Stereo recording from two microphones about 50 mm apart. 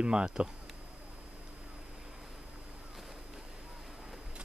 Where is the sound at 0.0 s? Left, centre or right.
Centre.